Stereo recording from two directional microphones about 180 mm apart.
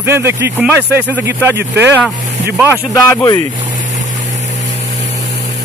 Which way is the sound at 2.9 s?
20° left (ahead or behind).